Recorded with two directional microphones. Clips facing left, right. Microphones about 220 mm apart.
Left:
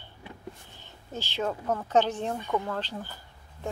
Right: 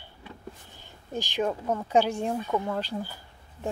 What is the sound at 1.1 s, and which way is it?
Speech, 15° right (ahead or behind).